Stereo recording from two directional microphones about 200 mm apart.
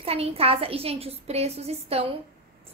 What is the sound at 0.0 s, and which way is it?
A woman's voice, 30° right (ahead or behind).